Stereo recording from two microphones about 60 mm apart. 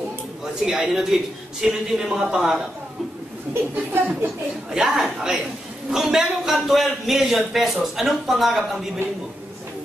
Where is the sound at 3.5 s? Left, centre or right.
Right.